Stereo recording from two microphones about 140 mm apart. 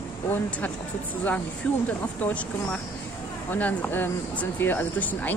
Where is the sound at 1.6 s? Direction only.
10° left (ahead or behind).